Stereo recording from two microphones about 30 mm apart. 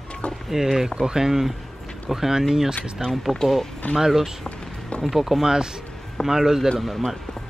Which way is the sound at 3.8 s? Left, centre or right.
Left.